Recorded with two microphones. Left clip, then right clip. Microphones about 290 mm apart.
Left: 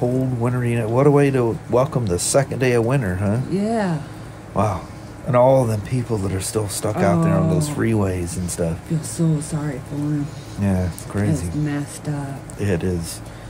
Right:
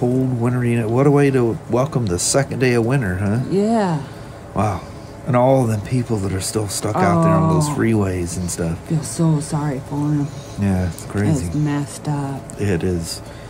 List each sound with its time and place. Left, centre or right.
0.4 s speech: centre
3.5 s speech: centre
4.6 s speech: centre
9.1 s speech: centre
10.6 s speech: centre
11.6 s speech: centre
12.5 s speech: centre